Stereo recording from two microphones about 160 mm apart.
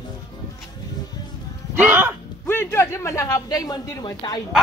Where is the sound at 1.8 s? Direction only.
10° right (ahead or behind).